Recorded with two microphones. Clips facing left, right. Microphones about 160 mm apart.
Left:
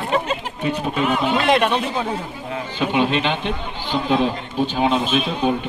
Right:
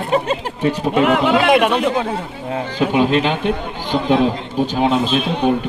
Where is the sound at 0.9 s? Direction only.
70° right (ahead or behind).